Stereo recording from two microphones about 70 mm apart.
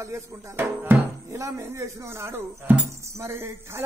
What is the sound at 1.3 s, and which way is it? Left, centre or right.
Speech, right.